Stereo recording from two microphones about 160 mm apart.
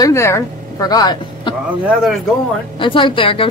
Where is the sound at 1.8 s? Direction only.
Centre (ahead or behind).